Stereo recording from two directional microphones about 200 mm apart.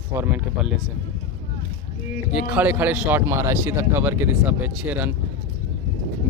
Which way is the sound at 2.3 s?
10° right (ahead or behind).